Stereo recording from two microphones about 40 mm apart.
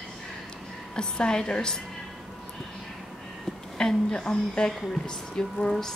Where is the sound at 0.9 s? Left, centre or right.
Centre.